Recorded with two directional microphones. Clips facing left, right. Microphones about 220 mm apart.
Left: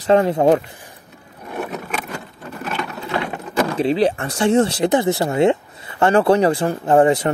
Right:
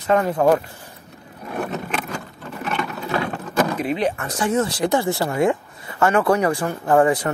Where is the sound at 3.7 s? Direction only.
30° left (ahead or behind).